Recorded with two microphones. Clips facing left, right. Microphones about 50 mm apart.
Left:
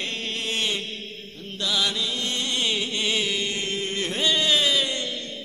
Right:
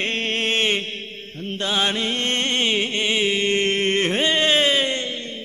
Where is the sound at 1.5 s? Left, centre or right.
Right.